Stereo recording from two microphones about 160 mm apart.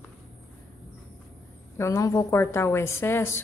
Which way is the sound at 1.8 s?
20° left (ahead or behind).